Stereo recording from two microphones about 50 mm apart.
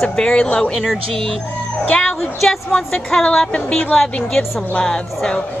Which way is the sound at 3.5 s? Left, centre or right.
Left.